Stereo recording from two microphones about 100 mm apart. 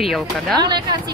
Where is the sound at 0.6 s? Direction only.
45° right (ahead or behind).